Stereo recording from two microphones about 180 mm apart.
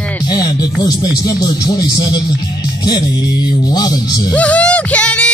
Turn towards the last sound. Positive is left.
turn(degrees=5)  # may be behind; listen again after turning